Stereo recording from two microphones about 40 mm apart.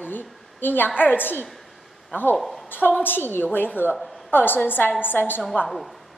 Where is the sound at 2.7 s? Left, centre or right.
Left.